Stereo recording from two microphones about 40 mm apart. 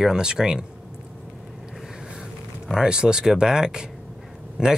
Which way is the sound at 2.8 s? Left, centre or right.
Right.